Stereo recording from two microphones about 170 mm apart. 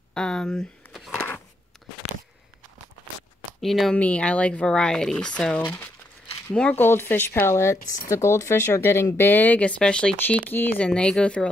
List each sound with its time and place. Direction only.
0.1 s speech: 5° left (ahead or behind)
1.1 s a sound: 15° left (ahead or behind)
3.6 s speech: centre (ahead or behind); by 7.8 s 15° left (ahead or behind)
7.8 s speech: 50° left (ahead or behind)
8.1 s speech: 15° left (ahead or behind)